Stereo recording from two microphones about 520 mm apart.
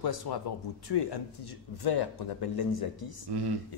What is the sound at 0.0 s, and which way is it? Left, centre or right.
Speech, left.